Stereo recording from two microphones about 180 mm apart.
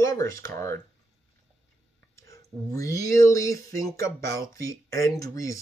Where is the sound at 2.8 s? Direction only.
15° left (ahead or behind).